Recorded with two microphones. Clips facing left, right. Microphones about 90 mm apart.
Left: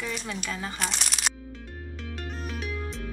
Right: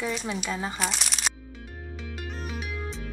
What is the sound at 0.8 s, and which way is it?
Crumpling, centre (ahead or behind).